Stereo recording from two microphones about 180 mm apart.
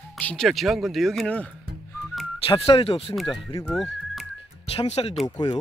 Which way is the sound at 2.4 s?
30° left (ahead or behind).